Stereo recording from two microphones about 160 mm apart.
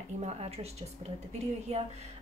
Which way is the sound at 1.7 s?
40° right (ahead or behind).